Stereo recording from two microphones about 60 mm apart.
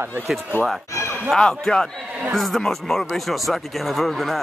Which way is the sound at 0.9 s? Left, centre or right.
Left.